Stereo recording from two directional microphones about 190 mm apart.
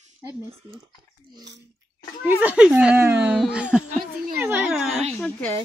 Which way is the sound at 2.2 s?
10° right (ahead or behind).